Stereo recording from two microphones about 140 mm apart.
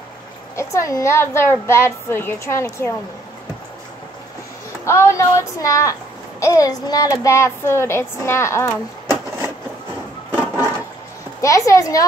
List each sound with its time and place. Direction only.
0.6 s a child's voice: 20° left (ahead or behind)
4.8 s a child's voice: 20° left (ahead or behind)
10.4 s toilet flush: 15° right (ahead or behind)
11.4 s a child's voice: 25° left (ahead or behind)